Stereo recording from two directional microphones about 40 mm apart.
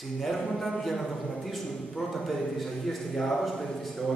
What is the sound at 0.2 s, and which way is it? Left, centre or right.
A man's voice, centre.